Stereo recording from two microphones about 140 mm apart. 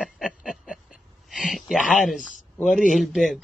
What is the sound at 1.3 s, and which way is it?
Speech, centre (ahead or behind).